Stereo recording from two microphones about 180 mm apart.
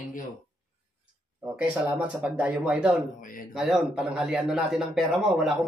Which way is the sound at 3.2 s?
50° left (ahead or behind).